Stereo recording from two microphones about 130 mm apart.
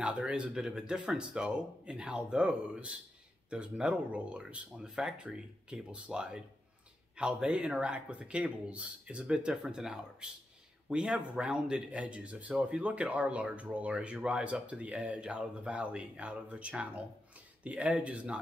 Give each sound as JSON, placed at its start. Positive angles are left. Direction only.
{"t": 0.0, "sound": "speech", "side_deg": -10}